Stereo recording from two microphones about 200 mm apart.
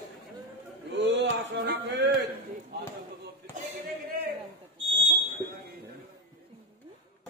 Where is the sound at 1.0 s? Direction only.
65° right (ahead or behind).